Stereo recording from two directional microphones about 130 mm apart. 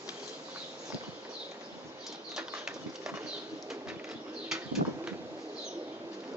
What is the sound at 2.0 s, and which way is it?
Bird flight, 5° right (ahead or behind).